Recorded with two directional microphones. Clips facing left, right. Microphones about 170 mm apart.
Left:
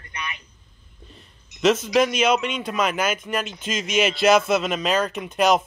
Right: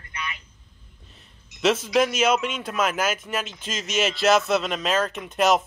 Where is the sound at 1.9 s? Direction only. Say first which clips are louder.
Left 1 dB; 5° right (ahead or behind).